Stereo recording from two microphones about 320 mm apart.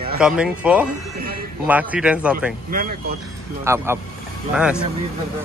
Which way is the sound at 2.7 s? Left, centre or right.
Right.